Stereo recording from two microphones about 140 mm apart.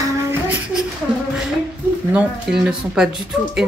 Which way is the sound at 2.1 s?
5° right (ahead or behind).